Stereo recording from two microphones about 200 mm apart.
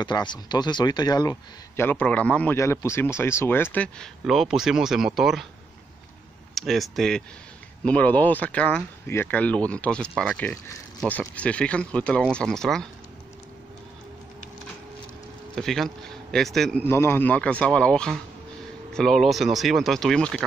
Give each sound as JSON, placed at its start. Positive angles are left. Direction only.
{"t": 0.0, "sound": "speech", "side_deg": 20}
{"t": 1.3, "sound": "speech", "side_deg": 10}
{"t": 6.5, "sound": "speech", "side_deg": 0}
{"t": 15.5, "sound": "speech", "side_deg": 0}